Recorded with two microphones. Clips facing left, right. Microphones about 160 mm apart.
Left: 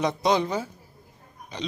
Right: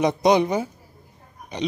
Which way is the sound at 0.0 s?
15° right (ahead or behind).